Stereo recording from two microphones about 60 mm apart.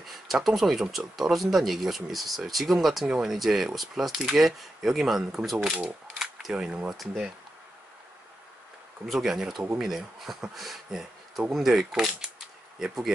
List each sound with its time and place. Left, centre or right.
0.0 s speech: centre
5.7 s speech: centre
9.0 s speech: centre